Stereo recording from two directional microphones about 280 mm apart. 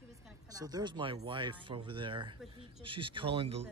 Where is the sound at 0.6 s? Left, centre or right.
Centre.